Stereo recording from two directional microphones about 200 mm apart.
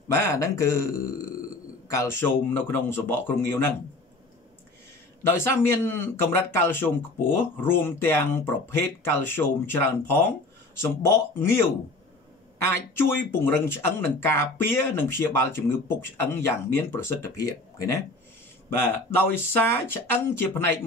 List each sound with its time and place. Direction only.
0.1 s speech: 15° left (ahead or behind)
5.2 s speech: 10° left (ahead or behind)
12.7 s speech: 10° left (ahead or behind)